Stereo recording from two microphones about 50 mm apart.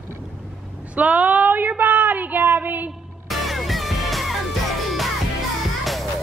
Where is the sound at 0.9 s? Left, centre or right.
Right.